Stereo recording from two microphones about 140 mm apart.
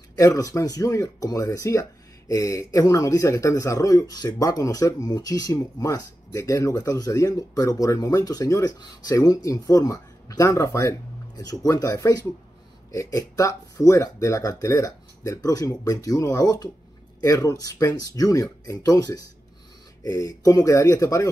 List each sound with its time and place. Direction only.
0.2 s speech: 25° left (ahead or behind)